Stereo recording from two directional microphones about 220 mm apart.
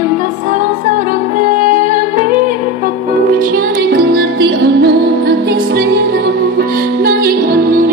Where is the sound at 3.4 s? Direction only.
40° right (ahead or behind).